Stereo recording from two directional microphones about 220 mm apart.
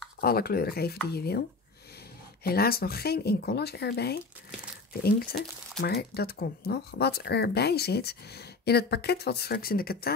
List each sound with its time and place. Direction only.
0.2 s speech: 45° left (ahead or behind)
2.4 s speech: 45° left (ahead or behind)